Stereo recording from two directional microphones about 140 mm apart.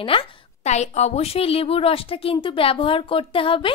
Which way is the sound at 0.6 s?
55° left (ahead or behind).